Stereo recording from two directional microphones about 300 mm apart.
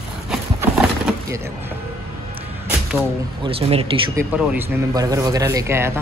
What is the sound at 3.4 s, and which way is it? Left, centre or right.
Speech, centre.